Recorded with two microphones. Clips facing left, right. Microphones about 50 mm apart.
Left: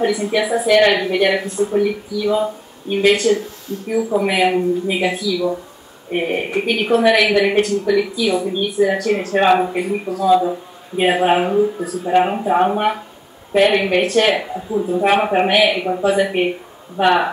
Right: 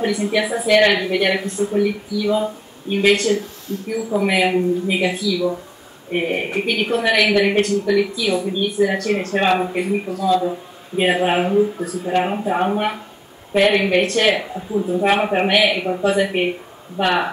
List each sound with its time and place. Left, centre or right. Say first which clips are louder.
0.2 s a woman's voice: left 2 dB; centre